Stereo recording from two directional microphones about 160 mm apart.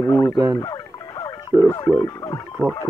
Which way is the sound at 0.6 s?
25° left (ahead or behind).